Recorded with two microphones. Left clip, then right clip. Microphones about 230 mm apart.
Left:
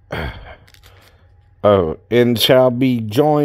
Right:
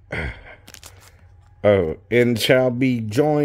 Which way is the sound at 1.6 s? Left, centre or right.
Left.